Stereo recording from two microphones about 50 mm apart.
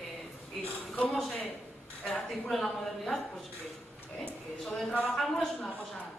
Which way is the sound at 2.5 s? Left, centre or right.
Centre.